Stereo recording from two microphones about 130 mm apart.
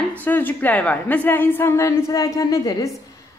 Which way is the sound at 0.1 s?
15° left (ahead or behind).